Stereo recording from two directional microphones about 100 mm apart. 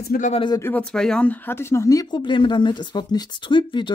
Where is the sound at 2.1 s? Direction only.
55° left (ahead or behind).